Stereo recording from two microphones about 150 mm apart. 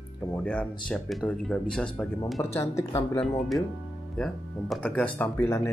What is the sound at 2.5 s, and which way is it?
Speech, 20° left (ahead or behind).